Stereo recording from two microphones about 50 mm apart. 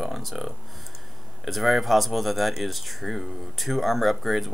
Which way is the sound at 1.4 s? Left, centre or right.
Centre.